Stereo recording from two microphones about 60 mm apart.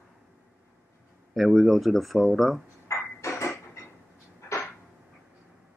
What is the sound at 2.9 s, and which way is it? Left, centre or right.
Music, left.